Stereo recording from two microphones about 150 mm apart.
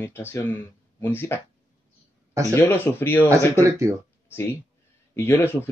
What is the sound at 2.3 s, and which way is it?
Speech, 20° right (ahead or behind).